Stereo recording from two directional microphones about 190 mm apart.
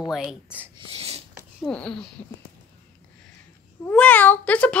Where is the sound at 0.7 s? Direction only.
35° right (ahead or behind).